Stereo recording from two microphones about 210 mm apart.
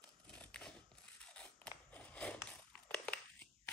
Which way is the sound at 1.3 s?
5° left (ahead or behind).